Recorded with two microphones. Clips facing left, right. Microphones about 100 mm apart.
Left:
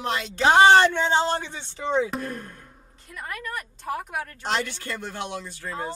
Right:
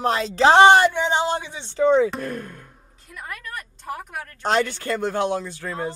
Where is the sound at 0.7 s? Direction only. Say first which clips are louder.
Right 1 dB; 10° right (ahead or behind).